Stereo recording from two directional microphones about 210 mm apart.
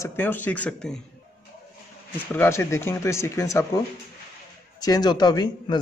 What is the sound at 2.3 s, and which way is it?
Speech, 10° left (ahead or behind).